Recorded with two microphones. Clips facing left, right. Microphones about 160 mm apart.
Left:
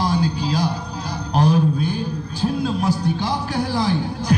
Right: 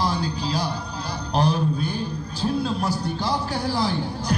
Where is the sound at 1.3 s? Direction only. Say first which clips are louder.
Left 4 dB; 50° left (ahead or behind).